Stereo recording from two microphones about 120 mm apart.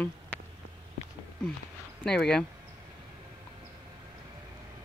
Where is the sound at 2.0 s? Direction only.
5° left (ahead or behind).